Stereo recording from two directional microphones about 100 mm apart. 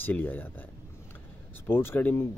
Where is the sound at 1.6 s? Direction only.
20° left (ahead or behind).